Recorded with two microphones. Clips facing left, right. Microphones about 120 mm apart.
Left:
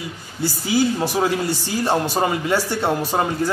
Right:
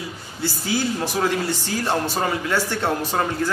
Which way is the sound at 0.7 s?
15° left (ahead or behind).